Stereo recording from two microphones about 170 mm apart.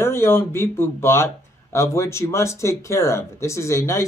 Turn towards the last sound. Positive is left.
turn(degrees=15)  # may be behind; listen again after turning